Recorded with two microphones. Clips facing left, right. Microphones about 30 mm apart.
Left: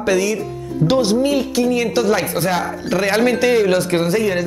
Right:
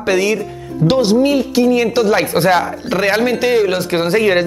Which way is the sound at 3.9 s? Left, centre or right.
Right.